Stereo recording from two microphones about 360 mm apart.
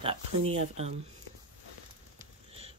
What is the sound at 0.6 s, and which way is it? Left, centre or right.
Speech, centre.